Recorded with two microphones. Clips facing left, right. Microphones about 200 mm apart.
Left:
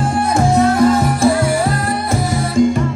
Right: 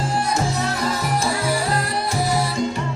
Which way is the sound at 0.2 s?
55° left (ahead or behind).